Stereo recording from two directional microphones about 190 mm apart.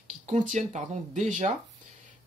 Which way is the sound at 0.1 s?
40° right (ahead or behind).